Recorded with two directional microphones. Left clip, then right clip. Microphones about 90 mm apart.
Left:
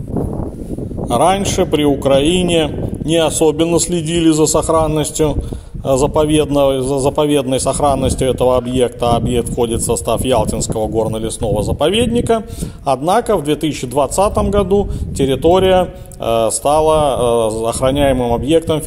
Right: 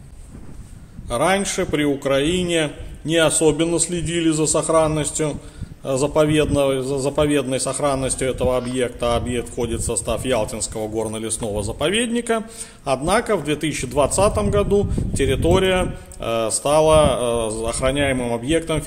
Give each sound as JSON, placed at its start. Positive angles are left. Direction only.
{"t": 1.1, "sound": "a man's voice", "side_deg": 80}
{"t": 5.9, "sound": "a man's voice", "side_deg": 75}
{"t": 11.0, "sound": "a man's voice", "side_deg": 35}
{"t": 18.1, "sound": "a man's voice", "side_deg": 35}